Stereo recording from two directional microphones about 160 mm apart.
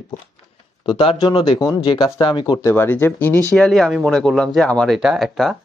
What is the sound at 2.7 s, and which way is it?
Speech, 15° left (ahead or behind).